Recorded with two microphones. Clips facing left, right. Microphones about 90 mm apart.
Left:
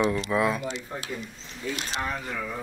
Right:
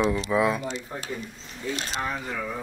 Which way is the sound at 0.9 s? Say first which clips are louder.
Right 1 dB; centre (ahead or behind).